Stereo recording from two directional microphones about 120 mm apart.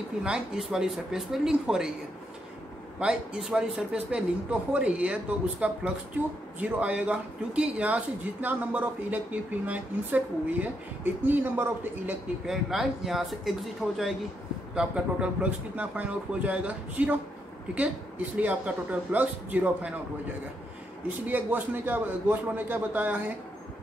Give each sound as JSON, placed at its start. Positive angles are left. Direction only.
{"t": 0.2, "sound": "speech", "side_deg": -5}
{"t": 3.0, "sound": "speech", "side_deg": -5}
{"t": 12.4, "sound": "speech", "side_deg": -5}
{"t": 18.4, "sound": "speech", "side_deg": -15}
{"t": 21.3, "sound": "speech", "side_deg": -15}